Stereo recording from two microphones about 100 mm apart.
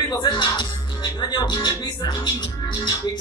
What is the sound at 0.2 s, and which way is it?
Speech, 45° left (ahead or behind).